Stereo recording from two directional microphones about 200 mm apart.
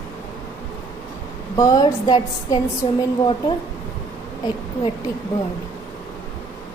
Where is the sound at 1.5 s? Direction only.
20° left (ahead or behind).